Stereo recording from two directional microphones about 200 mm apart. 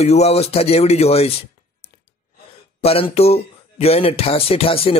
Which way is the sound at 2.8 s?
30° left (ahead or behind).